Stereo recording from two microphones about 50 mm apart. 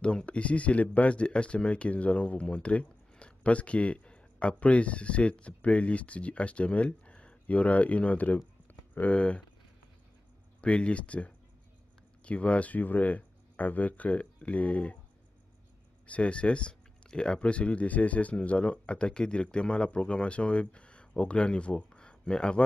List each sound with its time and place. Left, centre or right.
0.0 s speech: left
10.6 s speech: left
16.1 s speech: left